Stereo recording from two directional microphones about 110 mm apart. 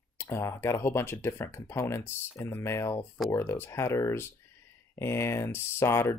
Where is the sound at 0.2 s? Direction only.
25° left (ahead or behind).